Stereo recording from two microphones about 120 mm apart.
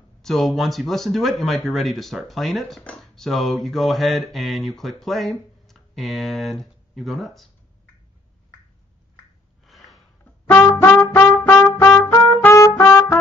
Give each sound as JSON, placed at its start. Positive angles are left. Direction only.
{"t": 0.2, "sound": "speech", "side_deg": 0}
{"t": 9.7, "sound": "a sound", "side_deg": 0}
{"t": 10.5, "sound": "trumpet", "side_deg": 20}